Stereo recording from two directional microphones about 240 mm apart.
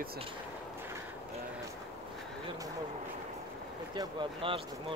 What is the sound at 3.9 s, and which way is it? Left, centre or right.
Speech, centre.